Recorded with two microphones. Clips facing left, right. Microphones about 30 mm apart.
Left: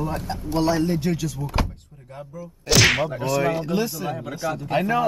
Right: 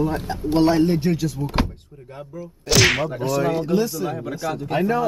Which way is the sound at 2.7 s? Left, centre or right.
Centre.